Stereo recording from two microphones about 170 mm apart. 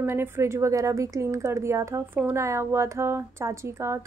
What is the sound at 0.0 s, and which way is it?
Speech, 15° right (ahead or behind).